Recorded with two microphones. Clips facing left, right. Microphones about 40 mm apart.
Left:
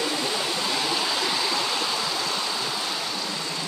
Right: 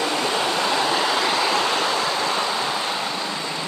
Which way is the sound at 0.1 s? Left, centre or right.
Right.